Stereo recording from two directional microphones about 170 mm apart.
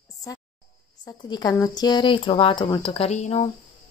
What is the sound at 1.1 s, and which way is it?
Speech, 25° left (ahead or behind).